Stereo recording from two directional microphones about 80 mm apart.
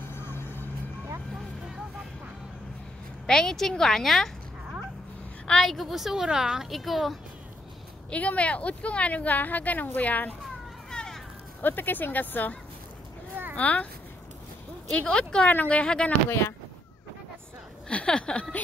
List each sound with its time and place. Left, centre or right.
3.3 s a woman's voice: centre
5.5 s a woman's voice: centre
8.1 s speech: centre
10.9 s a sound: centre
11.6 s speech: left
13.6 s speech: centre
14.9 s speech: centre
17.8 s a sound: centre